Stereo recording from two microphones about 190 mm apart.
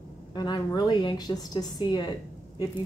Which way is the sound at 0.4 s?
20° left (ahead or behind).